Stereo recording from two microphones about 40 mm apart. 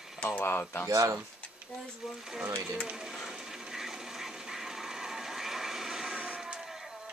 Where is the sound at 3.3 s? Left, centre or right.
Centre.